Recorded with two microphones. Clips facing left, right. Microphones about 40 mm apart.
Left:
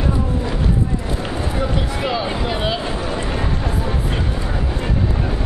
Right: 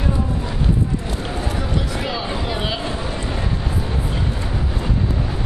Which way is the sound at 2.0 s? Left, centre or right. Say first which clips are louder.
Left 3 dB; centre.